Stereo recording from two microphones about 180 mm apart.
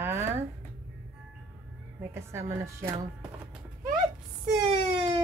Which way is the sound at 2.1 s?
15° right (ahead or behind).